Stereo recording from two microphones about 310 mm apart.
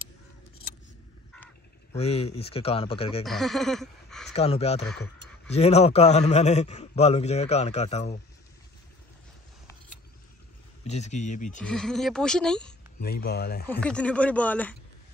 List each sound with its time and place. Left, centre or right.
2.0 s a man's voice: centre
3.3 s speech: centre
4.3 s a man's voice: centre
4.8 s speech: centre
5.5 s a man's voice: left
10.8 s a man's voice: left
11.6 s speech: centre
13.0 s speech: left
13.7 s speech: centre